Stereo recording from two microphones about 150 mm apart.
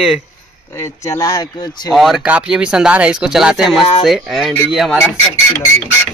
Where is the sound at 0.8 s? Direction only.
20° left (ahead or behind).